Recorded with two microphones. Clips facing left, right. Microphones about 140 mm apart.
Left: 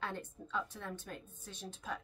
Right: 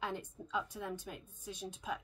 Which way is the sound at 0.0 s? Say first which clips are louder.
Right 1 dB; 15° right (ahead or behind).